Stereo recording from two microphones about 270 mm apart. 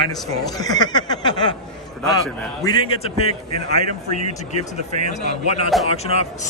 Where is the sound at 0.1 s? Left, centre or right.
Centre.